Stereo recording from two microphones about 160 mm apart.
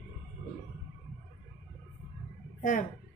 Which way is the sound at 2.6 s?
55° left (ahead or behind).